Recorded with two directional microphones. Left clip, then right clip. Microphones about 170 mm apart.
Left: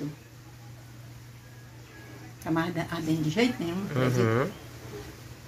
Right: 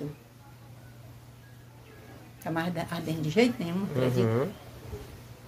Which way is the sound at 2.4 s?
45° right (ahead or behind).